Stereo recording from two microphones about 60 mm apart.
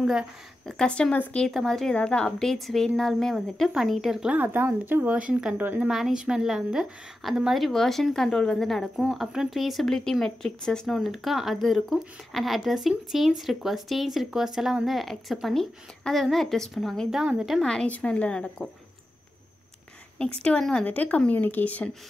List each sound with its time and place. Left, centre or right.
0.7 s speech: centre
1.5 s speech: centre
2.0 s speech: centre
3.7 s a woman's voice: centre
4.3 s a woman's voice: right
5.1 s speech: centre
5.6 s a woman's voice: right
5.9 s a woman's voice: centre
9.1 s a woman's voice: centre
11.0 s speech: centre
17.6 s speech: centre
20.2 s speech: centre
20.8 s speech: left